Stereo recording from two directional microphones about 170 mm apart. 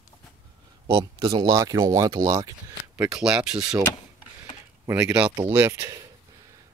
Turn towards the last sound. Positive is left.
turn(degrees=-10)  # may be behind; listen again after turning